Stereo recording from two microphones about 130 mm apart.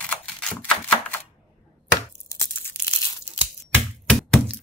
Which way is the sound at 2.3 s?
20° left (ahead or behind).